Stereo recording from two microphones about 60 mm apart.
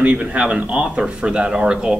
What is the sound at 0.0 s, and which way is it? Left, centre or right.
A man's voice, right.